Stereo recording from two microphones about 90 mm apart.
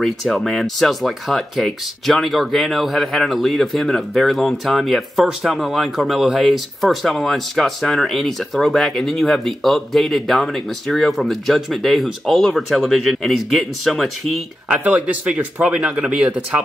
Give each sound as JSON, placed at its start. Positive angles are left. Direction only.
{"t": 0.0, "sound": "speech", "side_deg": 0}
{"t": 14.7, "sound": "speech", "side_deg": -15}